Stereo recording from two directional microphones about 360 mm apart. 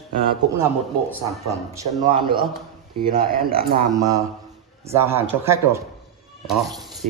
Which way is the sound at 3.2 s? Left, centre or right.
Right.